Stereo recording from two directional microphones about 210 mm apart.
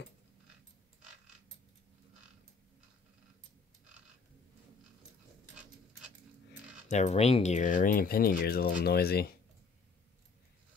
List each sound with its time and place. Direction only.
6.9 s speech: 35° left (ahead or behind); by 9.3 s 50° left (ahead or behind)